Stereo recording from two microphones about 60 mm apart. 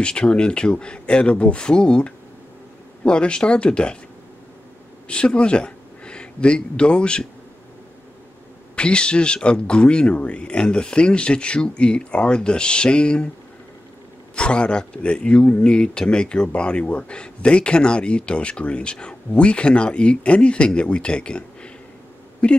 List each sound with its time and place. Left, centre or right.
0.0 s speech: centre
5.0 s speech: centre
8.7 s speech: centre
14.3 s a man's voice: centre